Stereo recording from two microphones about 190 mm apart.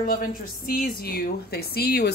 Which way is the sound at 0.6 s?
55° left (ahead or behind).